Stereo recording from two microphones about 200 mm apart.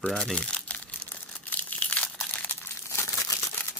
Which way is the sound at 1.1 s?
5° left (ahead or behind).